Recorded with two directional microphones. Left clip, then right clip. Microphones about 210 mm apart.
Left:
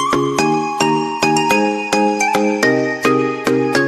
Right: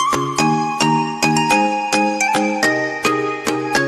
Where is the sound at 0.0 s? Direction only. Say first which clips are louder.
Left 1 dB; centre (ahead or behind).